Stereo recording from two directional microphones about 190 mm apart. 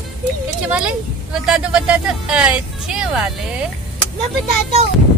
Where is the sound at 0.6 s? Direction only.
5° right (ahead or behind).